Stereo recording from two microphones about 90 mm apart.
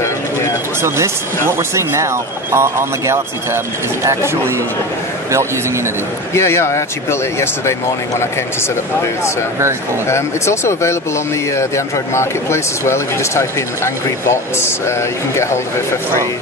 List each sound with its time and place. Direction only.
0.0 s bird: 30° left (ahead or behind)
0.8 s speech: 30° right (ahead or behind)
6.3 s speech: 30° left (ahead or behind)
10.0 s speech: 30° left (ahead or behind)